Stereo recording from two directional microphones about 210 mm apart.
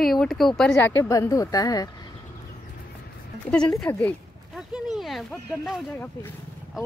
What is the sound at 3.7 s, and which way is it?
Speech, 15° left (ahead or behind).